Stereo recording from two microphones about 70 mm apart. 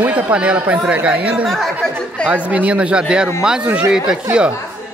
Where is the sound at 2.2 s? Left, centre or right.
Centre.